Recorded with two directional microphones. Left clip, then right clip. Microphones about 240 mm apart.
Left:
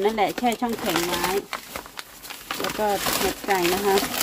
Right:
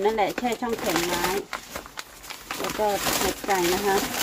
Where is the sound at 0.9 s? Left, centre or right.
Left.